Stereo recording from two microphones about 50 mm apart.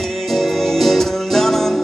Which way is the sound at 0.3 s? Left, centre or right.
Centre.